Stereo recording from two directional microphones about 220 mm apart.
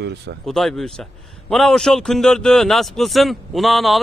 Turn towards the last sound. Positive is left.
turn(degrees=0)  # may be behind; listen again after turning